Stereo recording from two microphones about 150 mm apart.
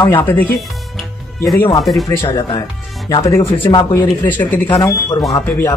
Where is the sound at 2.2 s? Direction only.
35° left (ahead or behind).